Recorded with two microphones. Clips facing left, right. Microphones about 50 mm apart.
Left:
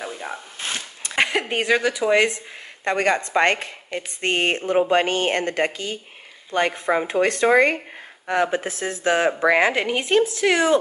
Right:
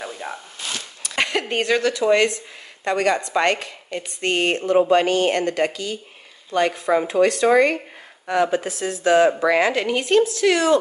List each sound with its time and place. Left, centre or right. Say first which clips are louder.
0.3 s zipper: even; centre
0.6 s a sound: left 1 dB; left
1.1 s speech: left 1 dB; centre
2.8 s speech: right 1 dB; left